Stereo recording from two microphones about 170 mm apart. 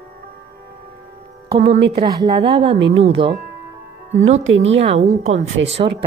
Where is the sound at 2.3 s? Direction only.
30° right (ahead or behind).